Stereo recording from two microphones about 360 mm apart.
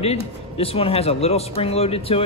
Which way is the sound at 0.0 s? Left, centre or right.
Centre.